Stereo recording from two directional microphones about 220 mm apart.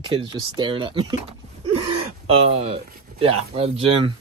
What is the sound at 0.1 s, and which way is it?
Speech, 25° right (ahead or behind).